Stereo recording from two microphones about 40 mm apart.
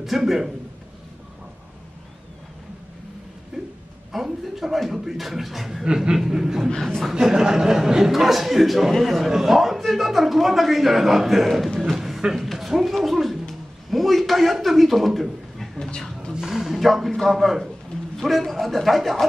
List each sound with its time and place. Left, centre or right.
0.0 s a man's voice: centre
3.5 s a sound: centre
4.1 s a man's voice: centre
5.9 s a man's voice: centre
11.9 s a sound: centre
16.3 s a man's voice: centre
16.7 s a man's voice: centre